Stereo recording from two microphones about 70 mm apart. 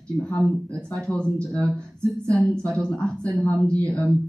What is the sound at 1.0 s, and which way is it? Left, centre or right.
Speech, centre.